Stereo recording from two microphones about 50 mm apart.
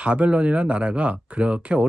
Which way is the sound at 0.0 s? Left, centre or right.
Right.